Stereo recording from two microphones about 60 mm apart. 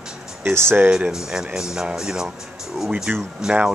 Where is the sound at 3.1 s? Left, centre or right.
Right.